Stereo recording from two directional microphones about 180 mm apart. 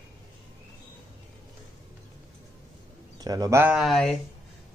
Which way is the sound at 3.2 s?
20° right (ahead or behind).